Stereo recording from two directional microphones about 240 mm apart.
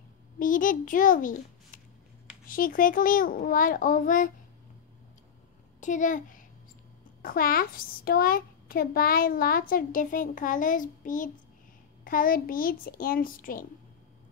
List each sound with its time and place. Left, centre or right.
0.4 s a child's voice: left
2.4 s a child's voice: left
5.8 s a child's voice: left